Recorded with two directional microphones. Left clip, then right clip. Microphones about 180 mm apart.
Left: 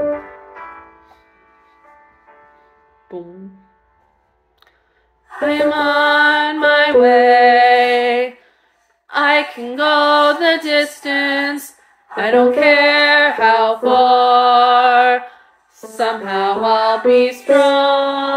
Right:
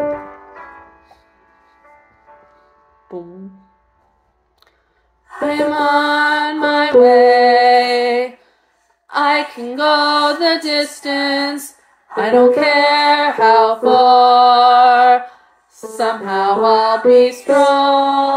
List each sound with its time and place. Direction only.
0.7 s music: 20° right (ahead or behind)
5.4 s music: 15° right (ahead or behind)
9.0 s mantra: 15° right (ahead or behind)
12.1 s female singing: 15° right (ahead or behind)